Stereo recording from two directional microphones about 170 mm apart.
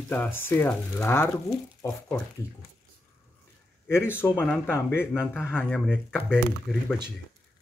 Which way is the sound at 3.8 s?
15° left (ahead or behind).